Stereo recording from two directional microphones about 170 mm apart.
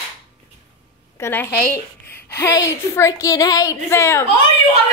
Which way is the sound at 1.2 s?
10° left (ahead or behind).